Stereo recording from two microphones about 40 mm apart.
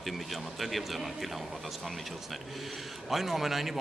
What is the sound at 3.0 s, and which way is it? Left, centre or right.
Speech, centre.